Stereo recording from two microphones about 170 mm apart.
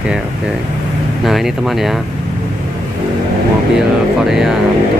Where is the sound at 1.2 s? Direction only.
Centre (ahead or behind).